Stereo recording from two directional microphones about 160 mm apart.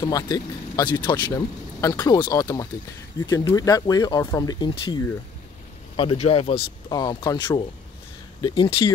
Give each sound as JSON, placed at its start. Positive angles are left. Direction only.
{"t": 0.0, "sound": "speech", "side_deg": 25}
{"t": 6.9, "sound": "speech", "side_deg": 25}